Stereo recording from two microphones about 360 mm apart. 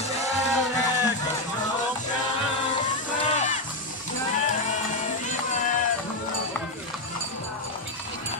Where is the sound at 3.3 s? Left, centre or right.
Centre.